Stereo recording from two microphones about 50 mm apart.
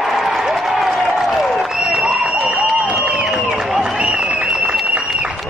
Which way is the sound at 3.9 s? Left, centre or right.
Right.